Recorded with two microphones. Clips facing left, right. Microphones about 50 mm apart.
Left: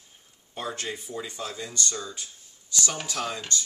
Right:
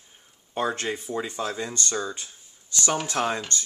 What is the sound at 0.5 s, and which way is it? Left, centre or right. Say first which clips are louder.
Speech: right 6 dB; right.